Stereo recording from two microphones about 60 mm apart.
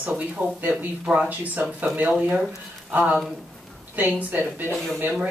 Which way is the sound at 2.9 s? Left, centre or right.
Right.